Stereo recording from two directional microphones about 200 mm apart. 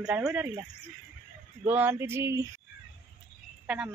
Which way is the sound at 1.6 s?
10° right (ahead or behind).